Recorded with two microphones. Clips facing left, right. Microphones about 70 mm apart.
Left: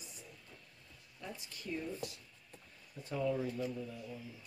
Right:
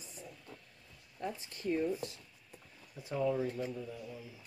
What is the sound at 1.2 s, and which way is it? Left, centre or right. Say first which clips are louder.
Speech: right 8 dB; right.